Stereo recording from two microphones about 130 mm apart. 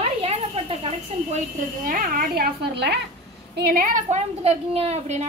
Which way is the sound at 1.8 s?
90° right.